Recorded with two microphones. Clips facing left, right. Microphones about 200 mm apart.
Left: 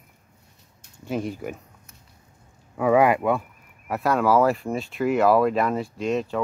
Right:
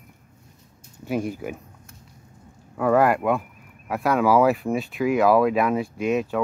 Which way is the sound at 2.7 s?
5° left (ahead or behind).